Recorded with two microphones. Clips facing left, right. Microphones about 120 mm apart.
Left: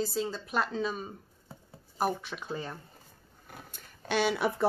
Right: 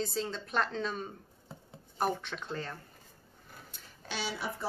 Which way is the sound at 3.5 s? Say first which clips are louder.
Left 4 dB; 60° left (ahead or behind).